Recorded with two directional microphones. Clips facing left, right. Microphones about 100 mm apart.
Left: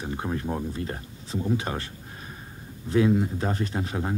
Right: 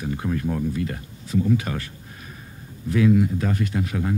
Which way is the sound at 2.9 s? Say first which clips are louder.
Right 3 dB; 30° left (ahead or behind).